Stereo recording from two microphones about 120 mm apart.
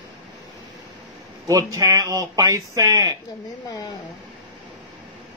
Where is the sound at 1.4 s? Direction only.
25° right (ahead or behind).